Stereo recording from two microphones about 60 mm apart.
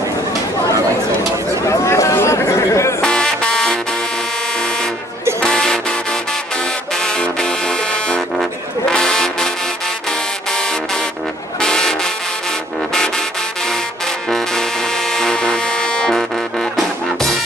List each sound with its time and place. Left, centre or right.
1.7 s a sound: left
2.1 s chatter: left
3.0 s a sound: centre
5.4 s music: centre
7.0 s music: centre
8.9 s brass instrument: centre
10.5 s music: centre
11.6 s vehicle: centre
14.3 s music: centre
16.2 s music: centre